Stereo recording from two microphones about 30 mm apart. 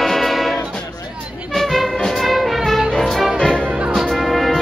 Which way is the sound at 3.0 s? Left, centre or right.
Centre.